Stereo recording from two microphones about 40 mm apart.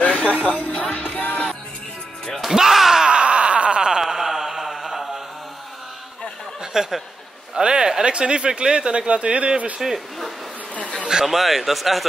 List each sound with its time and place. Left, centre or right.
0.0 s music: left
2.5 s slam: centre
3.1 s a sound: right
4.0 s mantra: centre
6.6 s a sound: centre
7.5 s speech: centre
9.8 s a man's voice: centre